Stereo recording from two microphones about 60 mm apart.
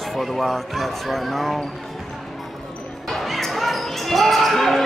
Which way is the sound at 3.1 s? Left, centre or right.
Centre.